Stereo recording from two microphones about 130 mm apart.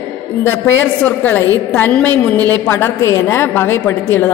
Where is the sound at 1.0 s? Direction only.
10° left (ahead or behind).